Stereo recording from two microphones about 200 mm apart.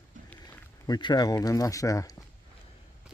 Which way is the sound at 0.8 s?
20° left (ahead or behind).